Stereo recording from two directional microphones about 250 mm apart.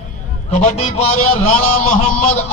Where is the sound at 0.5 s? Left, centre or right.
Left.